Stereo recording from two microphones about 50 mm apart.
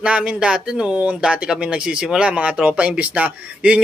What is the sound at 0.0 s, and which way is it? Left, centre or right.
Speech, right.